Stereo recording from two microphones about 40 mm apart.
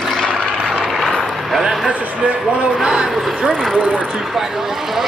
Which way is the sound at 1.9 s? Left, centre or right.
Right.